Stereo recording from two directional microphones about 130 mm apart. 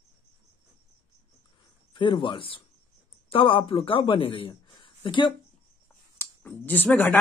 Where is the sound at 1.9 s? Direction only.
40° left (ahead or behind).